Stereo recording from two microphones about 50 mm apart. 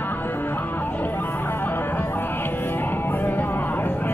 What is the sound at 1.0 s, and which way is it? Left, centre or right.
Music, left.